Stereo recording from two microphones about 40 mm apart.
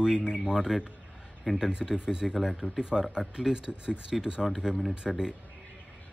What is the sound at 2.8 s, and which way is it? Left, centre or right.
Speech, right.